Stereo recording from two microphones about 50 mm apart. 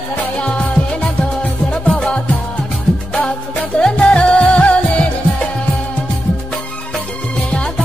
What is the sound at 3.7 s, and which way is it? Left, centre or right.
Music, left.